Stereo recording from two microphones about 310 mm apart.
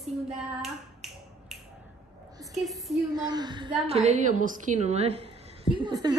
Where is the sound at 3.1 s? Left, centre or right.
Centre.